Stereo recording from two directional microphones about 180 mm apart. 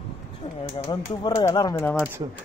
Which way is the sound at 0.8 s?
25° left (ahead or behind).